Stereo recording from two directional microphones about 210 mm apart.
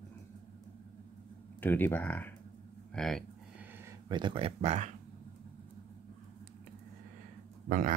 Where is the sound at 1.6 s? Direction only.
10° left (ahead or behind).